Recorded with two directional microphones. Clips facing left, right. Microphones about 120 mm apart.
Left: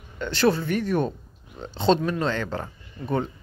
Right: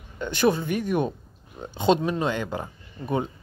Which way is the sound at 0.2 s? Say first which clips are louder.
Even; 15° right (ahead or behind).